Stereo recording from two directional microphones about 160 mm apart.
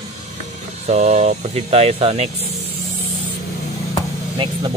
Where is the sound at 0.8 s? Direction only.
45° right (ahead or behind).